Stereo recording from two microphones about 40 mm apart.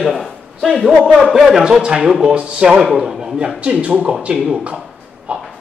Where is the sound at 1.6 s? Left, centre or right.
Right.